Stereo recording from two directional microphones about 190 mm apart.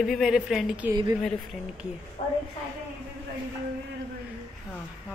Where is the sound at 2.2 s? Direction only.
45° left (ahead or behind).